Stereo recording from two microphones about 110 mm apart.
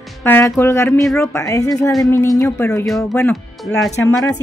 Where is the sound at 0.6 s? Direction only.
25° left (ahead or behind).